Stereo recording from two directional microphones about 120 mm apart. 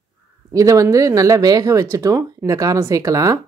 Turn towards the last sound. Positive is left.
turn(degrees=-30)  # may be behind; listen again after turning